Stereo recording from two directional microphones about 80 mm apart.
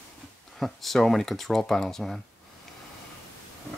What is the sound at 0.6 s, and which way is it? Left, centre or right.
Speech, centre.